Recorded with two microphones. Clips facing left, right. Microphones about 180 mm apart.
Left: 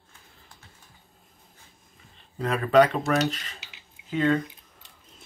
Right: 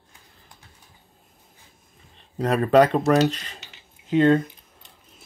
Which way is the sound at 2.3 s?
40° right (ahead or behind).